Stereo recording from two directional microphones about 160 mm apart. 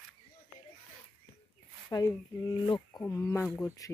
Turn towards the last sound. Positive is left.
turn(degrees=20)  # may be behind; listen again after turning